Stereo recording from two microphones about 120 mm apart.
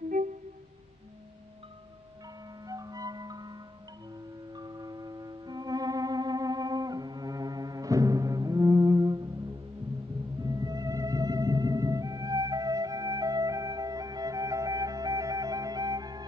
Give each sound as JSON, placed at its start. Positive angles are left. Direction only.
{"t": 2.6, "sound": "music", "side_deg": -30}
{"t": 4.6, "sound": "music", "side_deg": -35}
{"t": 10.4, "sound": "music", "side_deg": -30}